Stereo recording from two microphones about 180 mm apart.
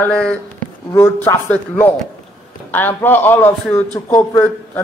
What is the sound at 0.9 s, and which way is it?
Speech, 15° left (ahead or behind).